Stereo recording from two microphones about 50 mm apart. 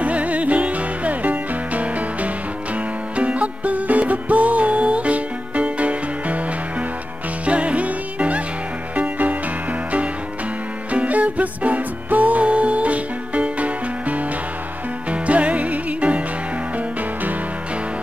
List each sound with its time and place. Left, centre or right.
0.0 s music: right
7.4 s music: right
10.9 s music: right